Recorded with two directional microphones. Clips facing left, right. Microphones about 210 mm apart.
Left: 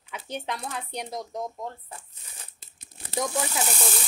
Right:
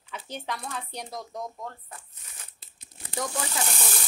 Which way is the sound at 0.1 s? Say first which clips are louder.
Left 2 dB; 20° left (ahead or behind).